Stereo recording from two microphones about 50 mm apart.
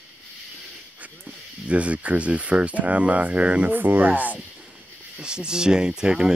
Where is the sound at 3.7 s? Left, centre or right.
Right.